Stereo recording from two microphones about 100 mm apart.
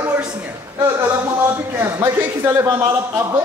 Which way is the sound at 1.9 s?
25° right (ahead or behind).